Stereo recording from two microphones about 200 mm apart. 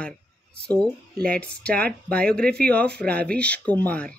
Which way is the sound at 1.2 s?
5° left (ahead or behind).